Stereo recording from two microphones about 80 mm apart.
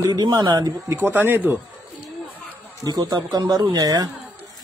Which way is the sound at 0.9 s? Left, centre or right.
Right.